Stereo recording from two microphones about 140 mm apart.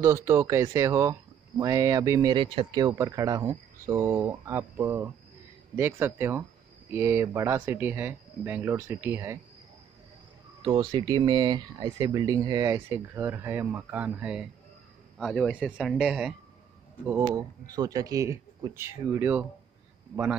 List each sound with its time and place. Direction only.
0.0 s speech: 20° right (ahead or behind)
2.9 s speech: 20° right (ahead or behind)
10.6 s speech: 35° right (ahead or behind); by 16.3 s 5° right (ahead or behind)
17.2 s speech: 25° right (ahead or behind)